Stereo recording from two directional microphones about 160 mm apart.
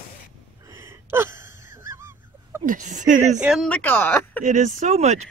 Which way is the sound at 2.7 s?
50° right (ahead or behind).